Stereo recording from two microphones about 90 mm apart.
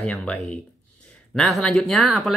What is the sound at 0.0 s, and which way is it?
Speech, 10° left (ahead or behind).